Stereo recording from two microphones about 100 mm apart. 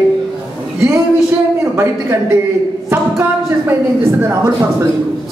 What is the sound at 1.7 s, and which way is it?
Speech, 25° right (ahead or behind).